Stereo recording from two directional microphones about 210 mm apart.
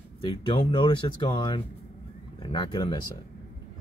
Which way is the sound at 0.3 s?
25° left (ahead or behind).